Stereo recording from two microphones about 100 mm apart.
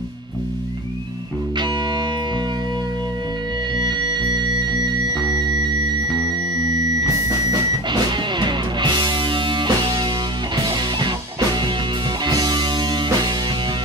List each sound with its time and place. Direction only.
3.7 s music: 50° right (ahead or behind)
7.9 s music: 50° right (ahead or behind)